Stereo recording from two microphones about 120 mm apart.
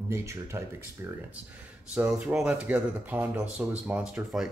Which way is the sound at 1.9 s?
10° right (ahead or behind).